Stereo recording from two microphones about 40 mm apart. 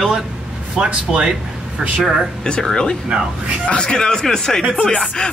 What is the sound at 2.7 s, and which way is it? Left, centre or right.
Speech, centre.